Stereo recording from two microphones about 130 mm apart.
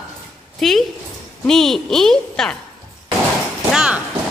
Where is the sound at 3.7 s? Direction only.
5° right (ahead or behind).